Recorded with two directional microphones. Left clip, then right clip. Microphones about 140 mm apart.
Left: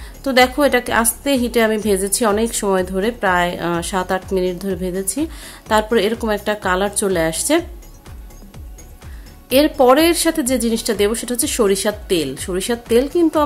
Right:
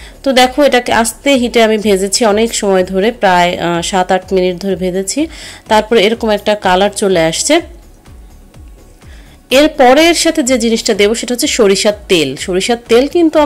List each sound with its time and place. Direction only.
0.0 s a woman's voice: 15° right (ahead or behind)
9.5 s a woman's voice: 15° right (ahead or behind)